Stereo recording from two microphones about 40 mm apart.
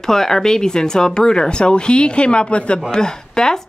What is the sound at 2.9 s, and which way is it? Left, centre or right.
Speech, centre.